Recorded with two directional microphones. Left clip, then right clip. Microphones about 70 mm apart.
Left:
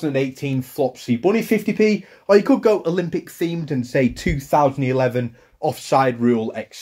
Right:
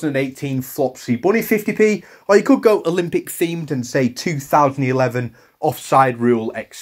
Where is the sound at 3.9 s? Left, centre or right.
Left.